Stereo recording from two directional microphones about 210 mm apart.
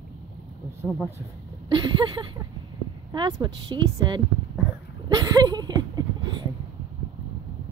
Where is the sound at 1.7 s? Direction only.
20° right (ahead or behind).